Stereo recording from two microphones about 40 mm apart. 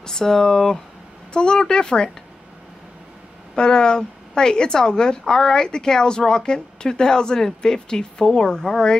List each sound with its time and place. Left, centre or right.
0.0 s a woman's voice: centre
3.5 s a woman's voice: left